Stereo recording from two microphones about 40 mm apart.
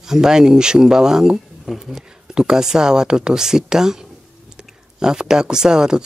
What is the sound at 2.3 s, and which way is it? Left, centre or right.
Speech, centre.